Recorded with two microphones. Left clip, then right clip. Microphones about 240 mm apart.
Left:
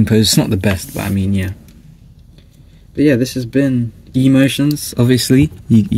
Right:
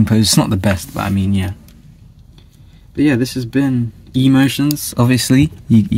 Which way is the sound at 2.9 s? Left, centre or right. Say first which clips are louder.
Left 2 dB; centre.